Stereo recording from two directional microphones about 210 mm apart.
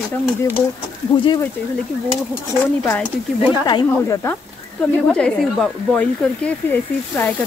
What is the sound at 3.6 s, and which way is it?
Speech, 15° left (ahead or behind).